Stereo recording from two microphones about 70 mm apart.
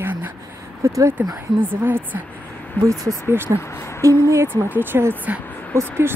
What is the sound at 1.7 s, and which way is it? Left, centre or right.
Speech, right.